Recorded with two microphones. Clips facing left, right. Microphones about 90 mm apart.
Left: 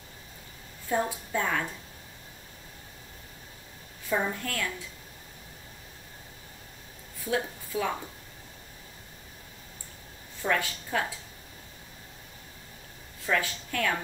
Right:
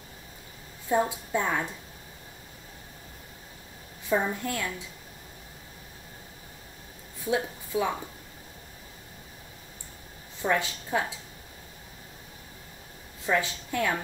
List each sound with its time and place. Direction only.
0.8 s a woman's voice: 20° right (ahead or behind)
4.1 s a woman's voice: 15° right (ahead or behind)
7.2 s a woman's voice: 20° right (ahead or behind)
10.4 s a woman's voice: 15° right (ahead or behind)
13.2 s a woman's voice: 20° right (ahead or behind)